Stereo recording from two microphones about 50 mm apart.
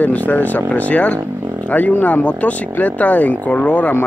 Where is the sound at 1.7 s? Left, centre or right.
Left.